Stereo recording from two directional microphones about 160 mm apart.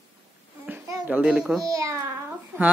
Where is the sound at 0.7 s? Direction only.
10° right (ahead or behind).